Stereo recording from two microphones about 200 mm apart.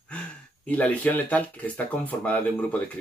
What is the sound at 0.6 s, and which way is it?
Speech, 5° left (ahead or behind).